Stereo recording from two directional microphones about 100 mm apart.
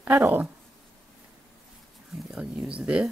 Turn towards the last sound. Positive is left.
turn(degrees=-10)  # may be behind; listen again after turning